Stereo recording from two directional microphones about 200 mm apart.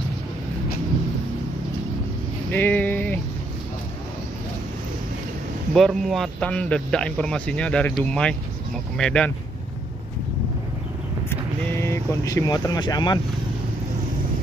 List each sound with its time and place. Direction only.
2.5 s vehicle: 10° left (ahead or behind)
5.7 s a man's voice: centre (ahead or behind)
11.2 s speech: 15° left (ahead or behind)